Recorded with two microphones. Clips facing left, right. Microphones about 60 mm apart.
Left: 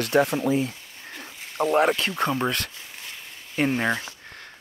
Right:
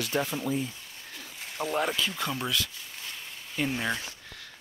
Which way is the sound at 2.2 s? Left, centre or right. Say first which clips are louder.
Left 10 dB; left.